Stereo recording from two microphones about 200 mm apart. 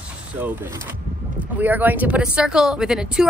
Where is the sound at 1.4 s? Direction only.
10° right (ahead or behind).